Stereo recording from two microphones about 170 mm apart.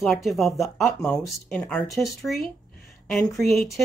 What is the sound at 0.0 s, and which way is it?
Speech, centre (ahead or behind).